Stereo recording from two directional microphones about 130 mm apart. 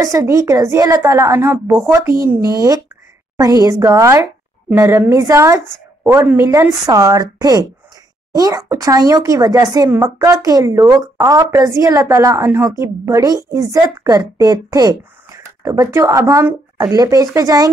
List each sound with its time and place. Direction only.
0.0 s a woman's voice: 25° right (ahead or behind)
2.4 s a woman's voice: 30° right (ahead or behind)